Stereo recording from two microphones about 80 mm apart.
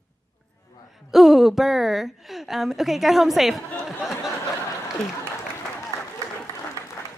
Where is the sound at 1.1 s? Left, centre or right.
Centre.